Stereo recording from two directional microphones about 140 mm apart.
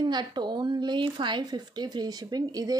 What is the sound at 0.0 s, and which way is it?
Speech, 30° right (ahead or behind).